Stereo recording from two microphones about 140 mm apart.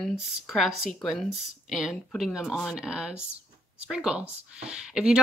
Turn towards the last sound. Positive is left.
turn(degrees=-5)  # may be behind; listen again after turning